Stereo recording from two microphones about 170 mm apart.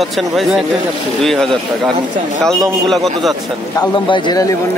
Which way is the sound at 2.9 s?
Centre (ahead or behind).